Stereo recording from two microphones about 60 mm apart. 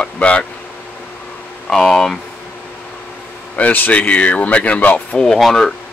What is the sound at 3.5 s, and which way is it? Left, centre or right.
Speech, left.